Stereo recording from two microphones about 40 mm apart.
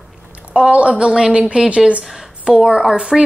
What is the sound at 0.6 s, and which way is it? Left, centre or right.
Speech, right.